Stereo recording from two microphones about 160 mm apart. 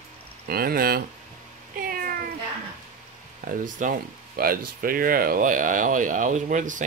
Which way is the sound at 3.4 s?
60° right (ahead or behind).